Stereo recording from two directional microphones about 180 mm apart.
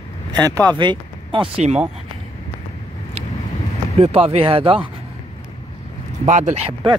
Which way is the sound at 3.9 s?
35° right (ahead or behind).